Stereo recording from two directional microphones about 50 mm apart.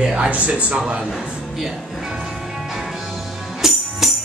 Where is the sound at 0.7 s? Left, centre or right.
Centre.